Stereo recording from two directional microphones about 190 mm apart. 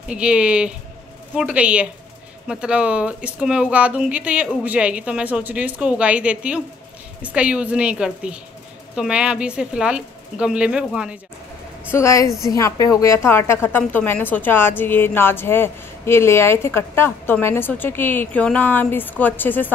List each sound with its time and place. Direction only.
0.1 s speech: 5° right (ahead or behind)
11.9 s a woman's voice: 15° left (ahead or behind)